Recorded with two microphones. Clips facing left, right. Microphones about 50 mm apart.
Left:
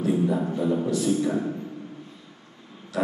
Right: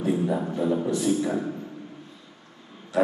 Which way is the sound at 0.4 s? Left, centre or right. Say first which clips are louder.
Even; centre.